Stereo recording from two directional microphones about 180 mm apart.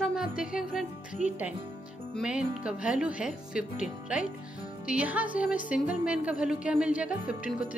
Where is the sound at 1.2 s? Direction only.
40° right (ahead or behind).